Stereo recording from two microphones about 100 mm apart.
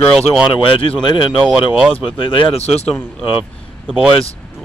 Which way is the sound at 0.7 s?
60° left (ahead or behind).